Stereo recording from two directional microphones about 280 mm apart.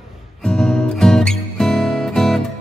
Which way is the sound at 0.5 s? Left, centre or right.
Centre.